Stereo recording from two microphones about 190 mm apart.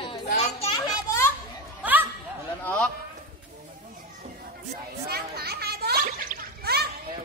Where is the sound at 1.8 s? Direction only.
10° right (ahead or behind).